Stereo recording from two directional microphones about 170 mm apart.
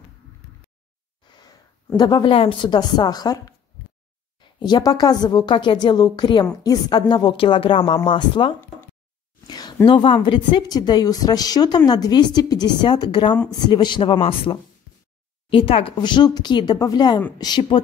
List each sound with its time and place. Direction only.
2.0 s a woman's voice: 25° left (ahead or behind)
4.6 s a woman's voice: 25° left (ahead or behind)
9.5 s a sound: 25° left (ahead or behind)
9.8 s a woman's voice: 30° left (ahead or behind)